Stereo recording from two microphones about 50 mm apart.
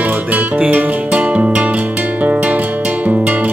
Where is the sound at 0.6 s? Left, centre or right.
Right.